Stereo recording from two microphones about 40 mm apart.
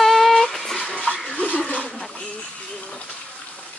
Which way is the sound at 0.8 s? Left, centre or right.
Left.